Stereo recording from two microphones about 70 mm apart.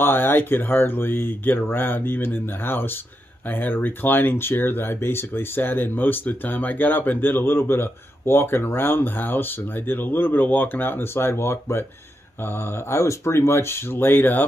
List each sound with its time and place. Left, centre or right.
0.0 s speech: left
12.9 s speech: left